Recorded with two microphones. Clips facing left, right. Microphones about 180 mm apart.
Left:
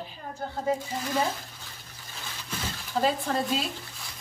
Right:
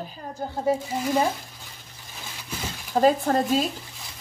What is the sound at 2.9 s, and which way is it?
Speech, 45° right (ahead or behind).